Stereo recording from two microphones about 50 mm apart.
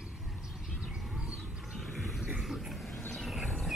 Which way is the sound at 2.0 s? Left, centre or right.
Centre.